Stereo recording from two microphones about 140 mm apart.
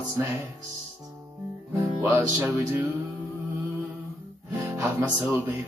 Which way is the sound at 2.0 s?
20° right (ahead or behind).